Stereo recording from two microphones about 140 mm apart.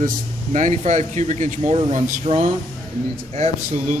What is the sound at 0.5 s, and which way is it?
Speech, 60° right (ahead or behind).